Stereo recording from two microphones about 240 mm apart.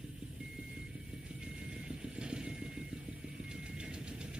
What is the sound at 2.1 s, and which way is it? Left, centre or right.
Vehicle, centre.